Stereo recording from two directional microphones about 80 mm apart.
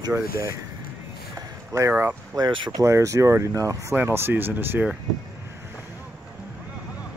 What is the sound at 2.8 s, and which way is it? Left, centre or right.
Speech, right.